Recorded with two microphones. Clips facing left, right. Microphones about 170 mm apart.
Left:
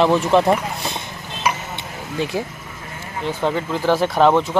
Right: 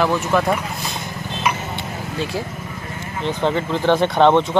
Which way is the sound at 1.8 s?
20° left (ahead or behind).